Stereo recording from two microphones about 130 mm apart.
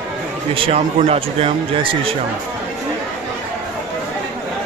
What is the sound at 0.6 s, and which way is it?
Speech, 55° right (ahead or behind).